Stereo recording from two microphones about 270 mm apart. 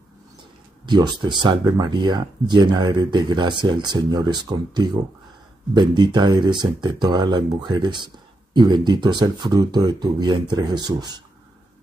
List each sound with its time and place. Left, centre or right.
0.8 s speech: centre